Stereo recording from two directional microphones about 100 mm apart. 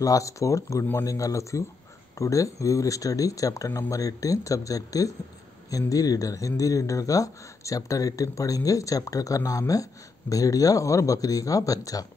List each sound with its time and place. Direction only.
0.0 s speech: 35° left (ahead or behind)